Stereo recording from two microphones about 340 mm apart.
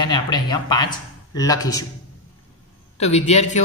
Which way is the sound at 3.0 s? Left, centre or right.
Centre.